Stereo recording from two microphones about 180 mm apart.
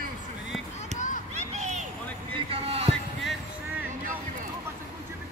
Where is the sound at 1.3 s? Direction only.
40° right (ahead or behind).